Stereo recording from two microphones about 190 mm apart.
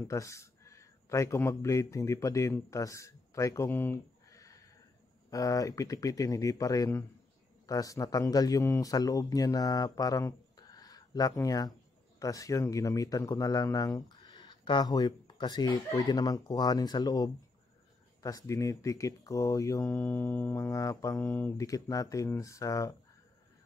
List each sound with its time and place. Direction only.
0.1 s speech: 15° left (ahead or behind)
19.9 s music: 5° left (ahead or behind)
20.2 s speech: 15° left (ahead or behind)